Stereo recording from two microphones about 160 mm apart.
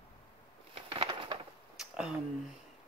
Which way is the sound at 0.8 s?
35° right (ahead or behind).